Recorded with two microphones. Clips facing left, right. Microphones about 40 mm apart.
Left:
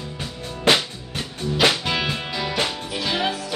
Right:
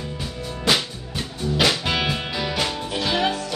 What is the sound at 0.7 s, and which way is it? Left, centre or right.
Music, left.